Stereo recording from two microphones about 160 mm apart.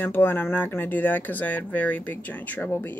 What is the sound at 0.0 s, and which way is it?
Speech, 15° left (ahead or behind).